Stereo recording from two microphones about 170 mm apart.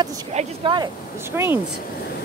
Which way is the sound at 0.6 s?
25° right (ahead or behind).